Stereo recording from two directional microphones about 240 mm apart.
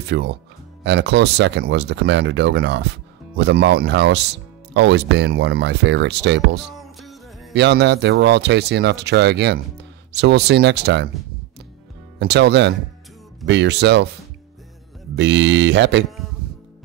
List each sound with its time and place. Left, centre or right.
0.0 s speech: right
6.7 s music: centre
7.5 s speech: right
12.2 s speech: right
15.1 s speech: right